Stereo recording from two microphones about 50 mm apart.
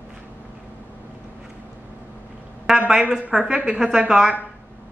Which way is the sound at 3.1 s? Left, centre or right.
Centre.